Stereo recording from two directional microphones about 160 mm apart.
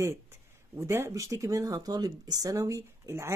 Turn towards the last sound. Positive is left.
turn(degrees=-20)  # may be behind; listen again after turning